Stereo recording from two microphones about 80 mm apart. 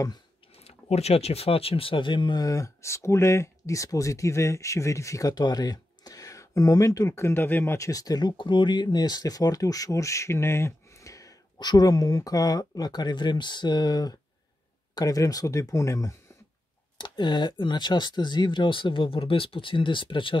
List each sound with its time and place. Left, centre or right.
2.0 s speech: left
2.4 s speech: left
5.3 s speech: left
7.7 s speech: left
17.0 s speech: left